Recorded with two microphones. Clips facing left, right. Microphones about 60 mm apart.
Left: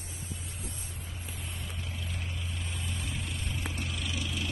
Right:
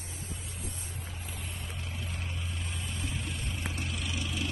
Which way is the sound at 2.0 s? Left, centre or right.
Right.